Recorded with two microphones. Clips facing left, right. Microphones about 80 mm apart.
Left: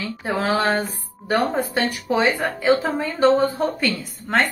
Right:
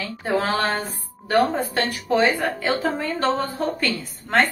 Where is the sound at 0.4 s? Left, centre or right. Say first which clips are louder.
Left 3 dB; centre.